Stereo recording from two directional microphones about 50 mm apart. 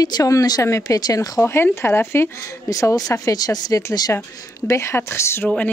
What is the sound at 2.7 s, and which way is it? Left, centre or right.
Speech, left.